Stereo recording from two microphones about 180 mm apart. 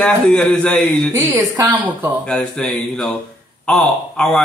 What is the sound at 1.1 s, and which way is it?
Speech, 20° right (ahead or behind).